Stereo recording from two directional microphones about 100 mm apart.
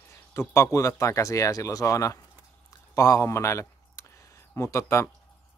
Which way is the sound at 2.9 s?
35° left (ahead or behind).